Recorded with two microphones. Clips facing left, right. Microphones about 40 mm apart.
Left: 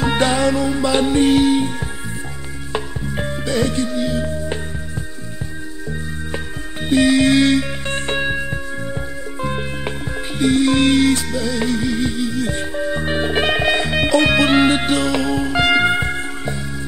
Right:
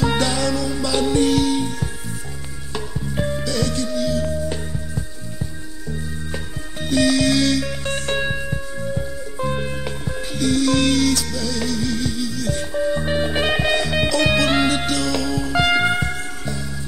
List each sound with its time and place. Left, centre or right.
0.0 s music: left
6.3 s music: left